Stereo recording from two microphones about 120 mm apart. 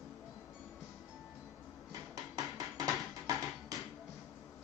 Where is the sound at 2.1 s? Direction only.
30° right (ahead or behind).